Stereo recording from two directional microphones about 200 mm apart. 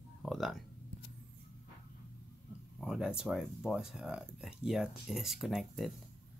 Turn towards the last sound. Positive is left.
turn(degrees=0)  # may be behind; listen again after turning